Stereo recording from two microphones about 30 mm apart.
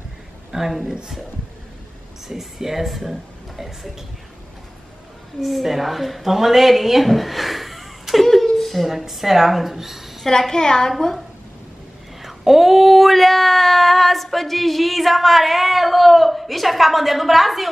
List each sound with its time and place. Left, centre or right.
0.5 s a woman's voice: centre
2.2 s speech: centre
5.4 s speech: centre
8.1 s a sound: centre
8.8 s speech: centre
10.5 s a woman's voice: left
12.2 s speech: centre